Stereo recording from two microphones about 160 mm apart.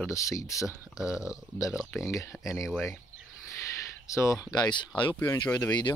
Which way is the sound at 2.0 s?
20° left (ahead or behind).